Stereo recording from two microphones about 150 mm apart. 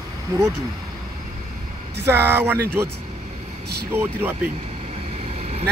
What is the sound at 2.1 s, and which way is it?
Speech, 15° right (ahead or behind).